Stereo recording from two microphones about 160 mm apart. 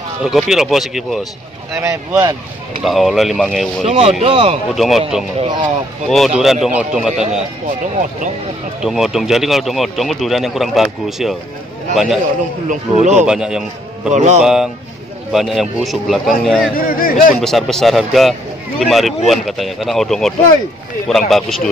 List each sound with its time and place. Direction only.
0.2 s speech: centre (ahead or behind)
1.8 s speech: 15° right (ahead or behind)
2.8 s speech: centre (ahead or behind)
3.8 s speech: 35° right (ahead or behind)
4.7 s speech: centre (ahead or behind)
5.4 s speech: 30° right (ahead or behind)
6.0 s speech: centre (ahead or behind)
8.8 s speech: centre (ahead or behind)
12.6 s speech: 45° right (ahead or behind)
13.2 s a man's voice: 5° right (ahead or behind)
14.1 s speech: 45° right (ahead or behind)
14.4 s speech: 5° right (ahead or behind)
16.7 s speech: 65° left (ahead or behind)
17.4 s speech: centre (ahead or behind)